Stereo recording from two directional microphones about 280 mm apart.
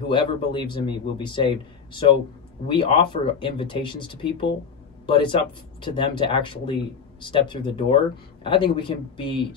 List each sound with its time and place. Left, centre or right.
0.1 s speech: centre